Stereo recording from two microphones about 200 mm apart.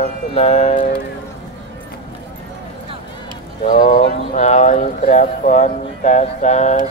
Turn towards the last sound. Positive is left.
turn(degrees=35)  # may be behind; listen again after turning